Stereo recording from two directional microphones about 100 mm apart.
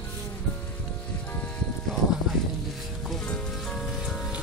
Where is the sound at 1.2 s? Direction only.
15° left (ahead or behind).